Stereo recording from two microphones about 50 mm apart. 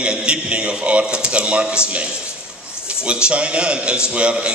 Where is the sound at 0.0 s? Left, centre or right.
Centre.